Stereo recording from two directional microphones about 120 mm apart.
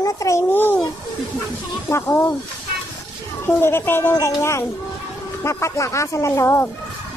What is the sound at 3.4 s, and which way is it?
Speech, 20° left (ahead or behind).